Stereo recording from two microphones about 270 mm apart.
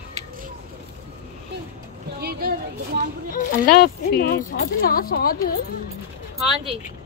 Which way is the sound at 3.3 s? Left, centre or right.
Left.